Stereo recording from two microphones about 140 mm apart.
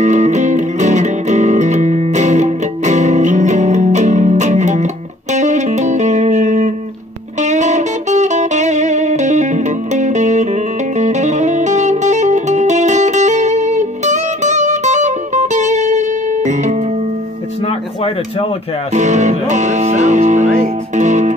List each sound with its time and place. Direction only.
0.0 s music: 55° right (ahead or behind)
17.6 s a sound: 40° left (ahead or behind)
18.9 s music: 55° right (ahead or behind)